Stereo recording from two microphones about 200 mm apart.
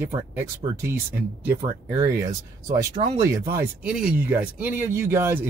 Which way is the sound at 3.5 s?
5° right (ahead or behind).